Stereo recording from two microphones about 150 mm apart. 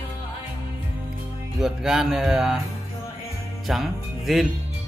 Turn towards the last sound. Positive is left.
turn(degrees=0)  # may be behind; listen again after turning